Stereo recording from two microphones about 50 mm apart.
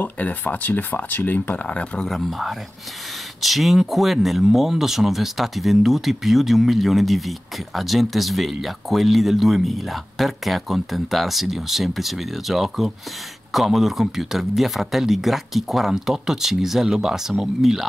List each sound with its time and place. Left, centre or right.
0.0 s speech: left
2.0 s speech: centre